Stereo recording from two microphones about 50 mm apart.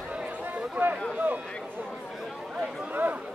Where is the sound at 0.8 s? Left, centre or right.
Right.